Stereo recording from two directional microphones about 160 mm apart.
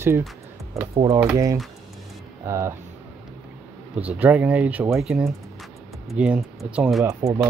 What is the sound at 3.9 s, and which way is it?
Speech, 10° right (ahead or behind).